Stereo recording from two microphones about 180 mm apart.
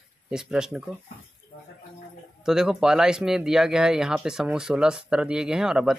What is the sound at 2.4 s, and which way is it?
Speech, centre (ahead or behind).